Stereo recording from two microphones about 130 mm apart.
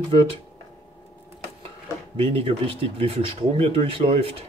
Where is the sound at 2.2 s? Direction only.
50° right (ahead or behind).